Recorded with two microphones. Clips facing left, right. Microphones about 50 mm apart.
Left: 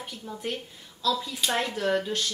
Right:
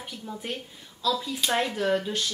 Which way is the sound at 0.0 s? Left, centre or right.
Centre.